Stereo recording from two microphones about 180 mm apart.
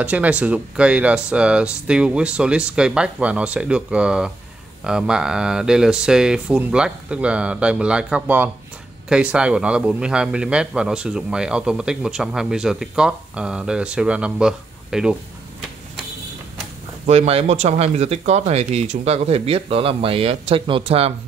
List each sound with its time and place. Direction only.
0.0 s a man's voice: 5° right (ahead or behind)
17.0 s speech: 40° right (ahead or behind)